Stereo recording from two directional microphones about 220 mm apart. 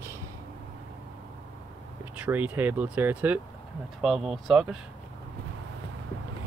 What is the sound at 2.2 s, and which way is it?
Speech, 10° right (ahead or behind).